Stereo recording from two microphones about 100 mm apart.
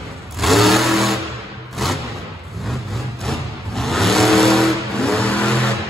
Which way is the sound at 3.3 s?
Centre (ahead or behind).